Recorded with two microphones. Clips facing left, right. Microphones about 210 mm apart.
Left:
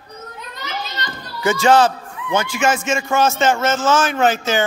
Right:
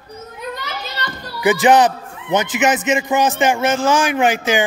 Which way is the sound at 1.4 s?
15° right (ahead or behind).